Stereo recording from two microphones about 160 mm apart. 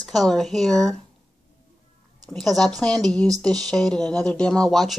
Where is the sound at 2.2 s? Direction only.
5° left (ahead or behind).